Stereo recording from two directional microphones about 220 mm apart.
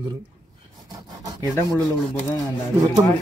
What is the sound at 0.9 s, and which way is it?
Rub, 15° right (ahead or behind).